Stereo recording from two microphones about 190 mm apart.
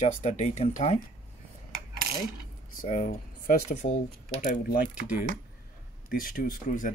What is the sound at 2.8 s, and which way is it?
Speech, 45° left (ahead or behind).